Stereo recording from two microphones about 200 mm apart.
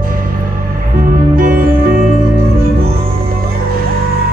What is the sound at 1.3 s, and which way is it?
Music, 45° right (ahead or behind).